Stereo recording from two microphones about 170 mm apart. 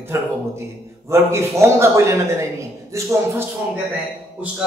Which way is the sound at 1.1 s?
15° right (ahead or behind).